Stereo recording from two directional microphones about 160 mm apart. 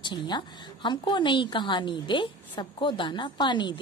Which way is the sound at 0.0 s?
30° left (ahead or behind).